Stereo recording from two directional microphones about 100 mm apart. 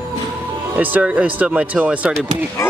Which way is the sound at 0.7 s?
15° right (ahead or behind).